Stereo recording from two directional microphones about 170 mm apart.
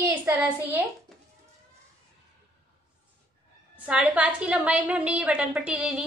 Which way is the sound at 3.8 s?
10° right (ahead or behind).